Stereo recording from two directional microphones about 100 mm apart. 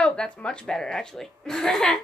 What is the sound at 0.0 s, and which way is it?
A woman's voice, 10° left (ahead or behind).